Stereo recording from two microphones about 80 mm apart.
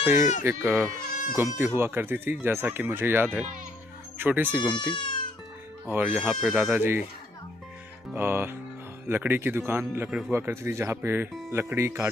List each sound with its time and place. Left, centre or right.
0.0 s speech: right
4.7 s speech: left
5.9 s speech: right
8.1 s speech: right